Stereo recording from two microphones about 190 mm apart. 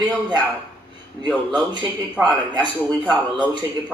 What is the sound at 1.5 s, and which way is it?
A man's voice, 25° right (ahead or behind).